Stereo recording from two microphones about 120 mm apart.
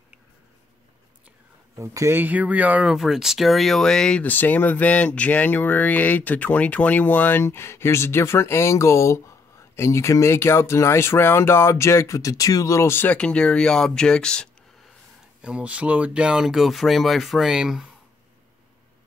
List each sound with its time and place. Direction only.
1.8 s speech: 25° right (ahead or behind); by 14.5 s 5° left (ahead or behind)
15.4 s speech: 10° right (ahead or behind)